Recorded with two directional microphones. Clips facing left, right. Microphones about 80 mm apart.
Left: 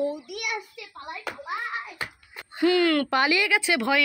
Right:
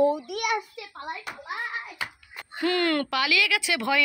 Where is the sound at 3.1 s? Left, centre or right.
Left.